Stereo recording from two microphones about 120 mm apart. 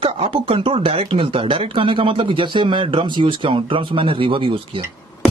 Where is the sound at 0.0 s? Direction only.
50° right (ahead or behind).